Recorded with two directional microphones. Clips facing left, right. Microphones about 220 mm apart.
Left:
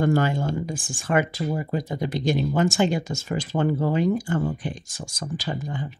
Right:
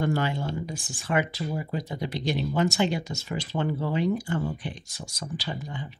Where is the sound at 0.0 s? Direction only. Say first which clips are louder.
Left 5 dB; 45° left (ahead or behind).